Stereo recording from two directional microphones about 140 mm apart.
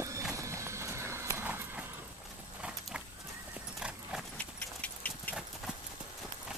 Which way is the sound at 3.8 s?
5° right (ahead or behind).